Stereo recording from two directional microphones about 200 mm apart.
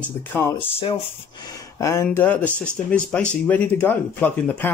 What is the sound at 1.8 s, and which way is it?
Speech, 15° left (ahead or behind).